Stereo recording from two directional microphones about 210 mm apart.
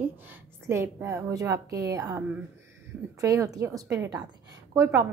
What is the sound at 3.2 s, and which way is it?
A woman's voice, 15° right (ahead or behind).